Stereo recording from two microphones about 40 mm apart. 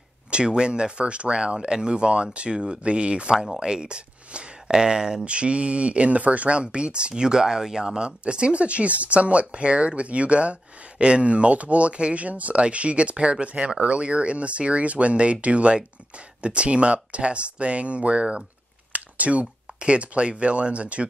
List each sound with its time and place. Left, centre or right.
0.3 s speech: right
5.2 s speech: right